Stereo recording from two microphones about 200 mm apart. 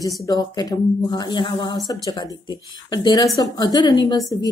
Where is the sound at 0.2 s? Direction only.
20° left (ahead or behind).